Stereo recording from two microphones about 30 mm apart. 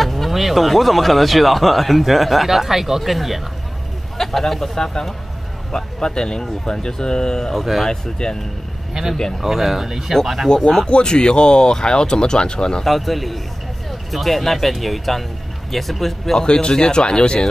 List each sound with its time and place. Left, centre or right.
0.0 s speech: centre
4.2 s speech: centre; by 8.4 s left
9.0 s speech: centre
9.4 s speech: centre
10.9 s speech: left
12.8 s speech: centre
16.3 s speech: left